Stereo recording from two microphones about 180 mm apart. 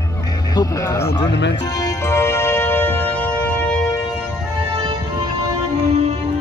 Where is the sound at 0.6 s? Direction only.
15° left (ahead or behind).